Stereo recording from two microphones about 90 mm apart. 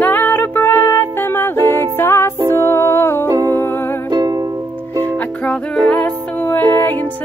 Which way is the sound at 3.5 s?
25° left (ahead or behind).